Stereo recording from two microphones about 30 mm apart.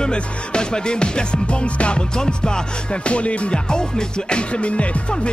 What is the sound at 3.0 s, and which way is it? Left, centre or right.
Music, left.